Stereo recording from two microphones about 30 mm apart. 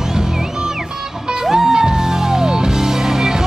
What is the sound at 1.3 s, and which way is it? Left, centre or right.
Music, right.